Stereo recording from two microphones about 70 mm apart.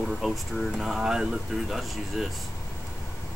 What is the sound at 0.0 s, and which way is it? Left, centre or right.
Speech, centre.